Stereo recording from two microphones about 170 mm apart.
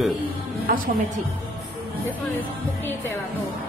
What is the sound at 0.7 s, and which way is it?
Speech, 60° right (ahead or behind).